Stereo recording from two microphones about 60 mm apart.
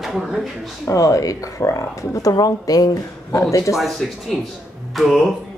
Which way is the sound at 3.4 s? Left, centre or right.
Left.